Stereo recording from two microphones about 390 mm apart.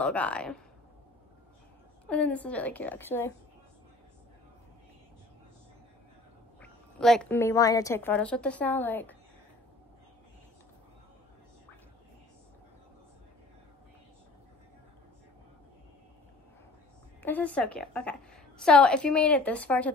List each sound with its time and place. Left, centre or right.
0.0 s a woman's voice: centre
2.0 s a woman's voice: centre
6.6 s a woman's voice: centre
17.2 s a woman's voice: centre